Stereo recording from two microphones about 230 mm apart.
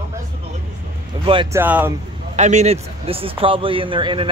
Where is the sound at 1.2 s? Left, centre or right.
Right.